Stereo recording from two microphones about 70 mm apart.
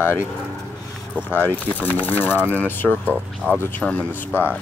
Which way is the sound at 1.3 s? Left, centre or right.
Left.